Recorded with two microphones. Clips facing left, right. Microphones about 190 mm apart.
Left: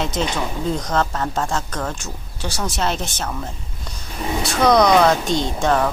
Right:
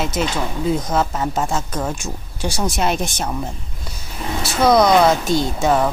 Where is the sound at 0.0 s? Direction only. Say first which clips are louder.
Right 1 dB; 5° right (ahead or behind).